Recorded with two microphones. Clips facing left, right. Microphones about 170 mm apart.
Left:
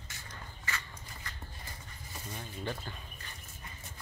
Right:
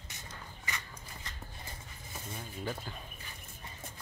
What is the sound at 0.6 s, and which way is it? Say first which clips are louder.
Walk: left 2 dB; 15° right (ahead or behind).